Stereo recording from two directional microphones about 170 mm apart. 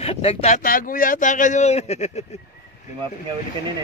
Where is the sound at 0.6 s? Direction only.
55° left (ahead or behind).